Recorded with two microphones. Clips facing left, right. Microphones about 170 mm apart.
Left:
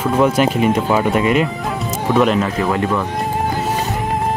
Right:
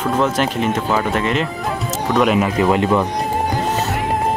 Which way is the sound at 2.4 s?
20° right (ahead or behind).